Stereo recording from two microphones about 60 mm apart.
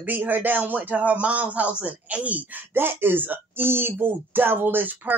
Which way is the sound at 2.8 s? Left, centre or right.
Right.